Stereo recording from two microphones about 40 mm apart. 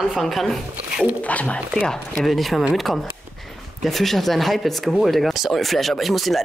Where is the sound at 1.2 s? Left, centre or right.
Left.